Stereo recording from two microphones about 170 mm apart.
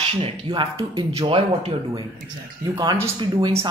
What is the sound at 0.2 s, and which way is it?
A woman's voice, 30° right (ahead or behind).